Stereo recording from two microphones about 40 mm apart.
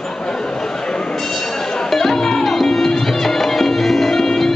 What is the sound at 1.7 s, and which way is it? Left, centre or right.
Music, centre.